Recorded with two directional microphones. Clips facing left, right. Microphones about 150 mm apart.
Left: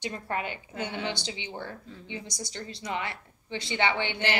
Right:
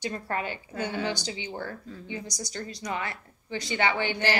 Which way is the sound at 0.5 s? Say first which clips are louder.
Right 2 dB; 20° left (ahead or behind).